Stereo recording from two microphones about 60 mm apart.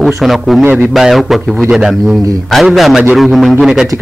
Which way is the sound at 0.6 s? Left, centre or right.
Right.